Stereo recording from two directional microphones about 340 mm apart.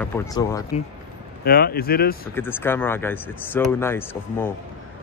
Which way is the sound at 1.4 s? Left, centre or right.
Left.